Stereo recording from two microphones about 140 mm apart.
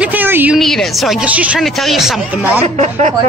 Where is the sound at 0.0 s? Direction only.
10° right (ahead or behind).